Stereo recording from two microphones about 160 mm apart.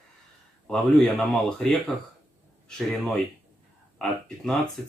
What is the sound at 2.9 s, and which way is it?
Speech, centre (ahead or behind).